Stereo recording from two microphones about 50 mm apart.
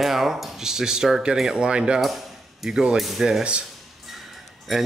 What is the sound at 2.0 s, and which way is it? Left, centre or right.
Speech, centre.